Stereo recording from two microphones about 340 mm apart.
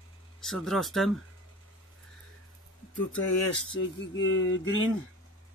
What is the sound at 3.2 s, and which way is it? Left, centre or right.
Speech, left.